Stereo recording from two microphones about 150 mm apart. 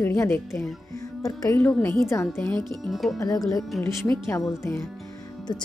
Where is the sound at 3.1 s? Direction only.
25° left (ahead or behind).